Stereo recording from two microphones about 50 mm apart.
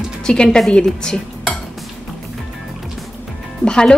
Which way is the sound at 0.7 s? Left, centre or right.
Centre.